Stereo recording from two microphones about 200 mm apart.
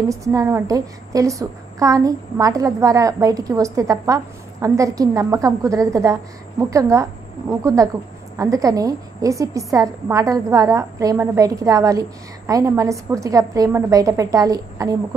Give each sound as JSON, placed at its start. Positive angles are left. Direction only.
{"t": 0.1, "sound": "a woman's voice", "side_deg": -15}